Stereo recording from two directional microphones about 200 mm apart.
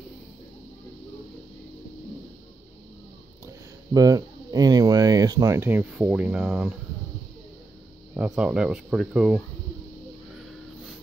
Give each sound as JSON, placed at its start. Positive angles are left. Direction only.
{"t": 3.4, "sound": "speech", "side_deg": -15}
{"t": 8.2, "sound": "speech", "side_deg": -5}